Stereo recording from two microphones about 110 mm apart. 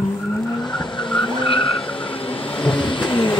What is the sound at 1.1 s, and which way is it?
Vehicle, 50° left (ahead or behind).